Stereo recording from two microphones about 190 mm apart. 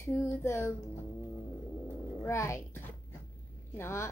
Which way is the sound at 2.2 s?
15° left (ahead or behind).